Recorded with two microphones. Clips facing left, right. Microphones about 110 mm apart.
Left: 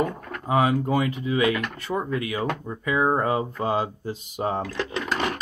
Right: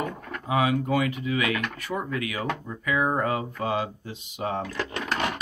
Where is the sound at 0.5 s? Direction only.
35° left (ahead or behind).